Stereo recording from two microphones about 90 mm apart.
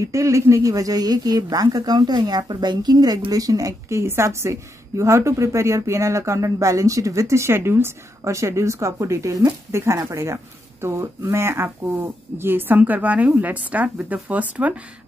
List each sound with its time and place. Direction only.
0.0 s a woman's voice: 35° right (ahead or behind); by 14.7 s 15° right (ahead or behind)